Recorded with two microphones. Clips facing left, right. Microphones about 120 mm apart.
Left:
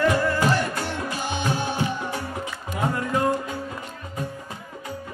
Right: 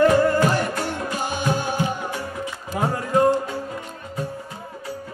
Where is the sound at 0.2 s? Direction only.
45° right (ahead or behind).